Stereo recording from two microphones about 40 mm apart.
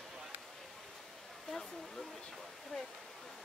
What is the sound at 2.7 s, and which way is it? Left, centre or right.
Waterfall, centre.